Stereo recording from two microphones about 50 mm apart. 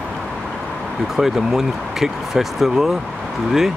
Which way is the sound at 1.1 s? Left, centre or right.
Centre.